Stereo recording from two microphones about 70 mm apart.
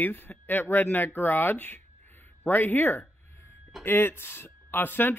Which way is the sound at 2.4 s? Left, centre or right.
Left.